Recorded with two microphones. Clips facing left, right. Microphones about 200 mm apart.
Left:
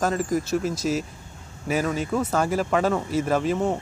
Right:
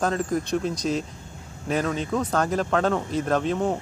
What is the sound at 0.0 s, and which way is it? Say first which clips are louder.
Speech: left 1 dB; 5° left (ahead or behind).